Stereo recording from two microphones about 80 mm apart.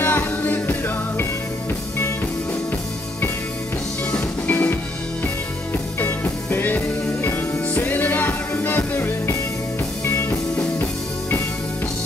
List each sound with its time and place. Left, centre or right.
0.0 s music: left
4.5 s music: left